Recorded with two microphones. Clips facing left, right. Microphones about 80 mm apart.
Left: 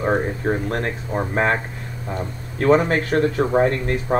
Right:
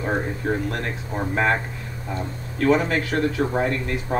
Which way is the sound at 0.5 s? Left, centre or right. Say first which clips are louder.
Left 2 dB; left.